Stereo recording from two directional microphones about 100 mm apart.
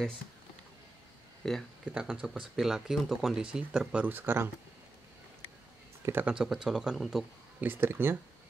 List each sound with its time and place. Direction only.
1.4 s speech: 5° left (ahead or behind)
1.9 s speech: 10° right (ahead or behind)
6.2 s speech: 5° right (ahead or behind)
7.6 s speech: 20° right (ahead or behind)